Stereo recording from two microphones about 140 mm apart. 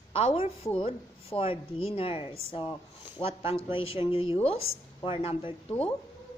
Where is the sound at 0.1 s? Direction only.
40° left (ahead or behind).